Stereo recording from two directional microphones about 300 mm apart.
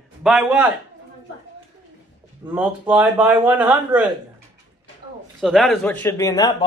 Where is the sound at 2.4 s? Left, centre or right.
Centre.